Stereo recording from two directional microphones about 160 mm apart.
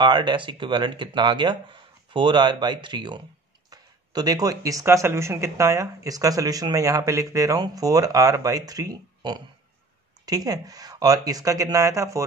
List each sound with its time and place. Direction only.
0.0 s speech: 30° right (ahead or behind)